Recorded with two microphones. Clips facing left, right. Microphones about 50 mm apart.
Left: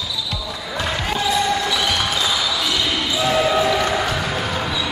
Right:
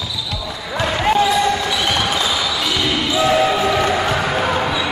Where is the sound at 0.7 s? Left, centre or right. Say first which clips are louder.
Right 7 dB; centre.